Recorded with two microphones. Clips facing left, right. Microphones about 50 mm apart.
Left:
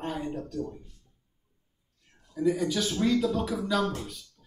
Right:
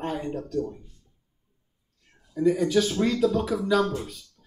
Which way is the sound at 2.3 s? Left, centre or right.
Centre.